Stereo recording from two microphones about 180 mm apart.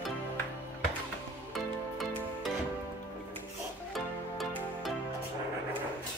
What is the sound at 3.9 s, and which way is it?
Music, centre (ahead or behind).